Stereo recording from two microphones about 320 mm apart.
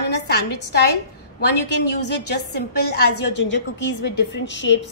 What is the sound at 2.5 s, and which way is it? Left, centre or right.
A woman's voice, left.